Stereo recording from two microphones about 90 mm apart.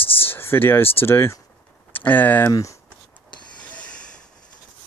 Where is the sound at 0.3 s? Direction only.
25° left (ahead or behind).